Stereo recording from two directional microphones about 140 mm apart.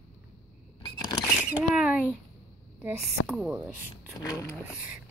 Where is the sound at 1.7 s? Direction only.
5° right (ahead or behind).